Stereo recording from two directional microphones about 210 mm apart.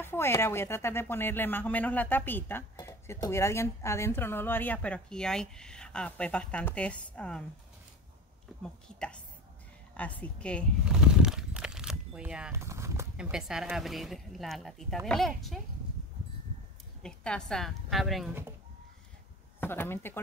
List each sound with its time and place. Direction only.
0.0 s a woman's voice: 10° left (ahead or behind)
8.6 s speech: 5° left (ahead or behind)
9.9 s a sound: 5° left (ahead or behind); by 13.3 s 15° right (ahead or behind)
13.3 s speech: centre (ahead or behind)
17.0 s speech: 5° left (ahead or behind)
19.6 s a woman's voice: 10° left (ahead or behind)